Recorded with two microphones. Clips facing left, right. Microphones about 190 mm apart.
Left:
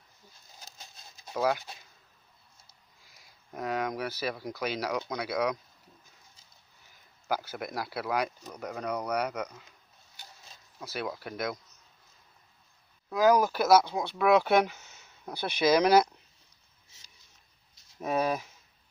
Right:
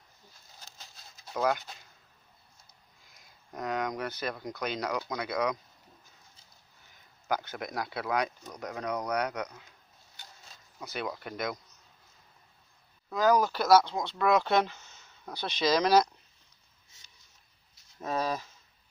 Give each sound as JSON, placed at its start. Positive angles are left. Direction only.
{"t": 0.7, "sound": "a sound", "side_deg": 20}
{"t": 1.3, "sound": "speech", "side_deg": 10}
{"t": 3.2, "sound": "speech", "side_deg": 5}
{"t": 7.2, "sound": "speech", "side_deg": 5}
{"t": 10.8, "sound": "speech", "side_deg": 5}
{"t": 13.1, "sound": "speech", "side_deg": 10}
{"t": 17.9, "sound": "speech", "side_deg": 10}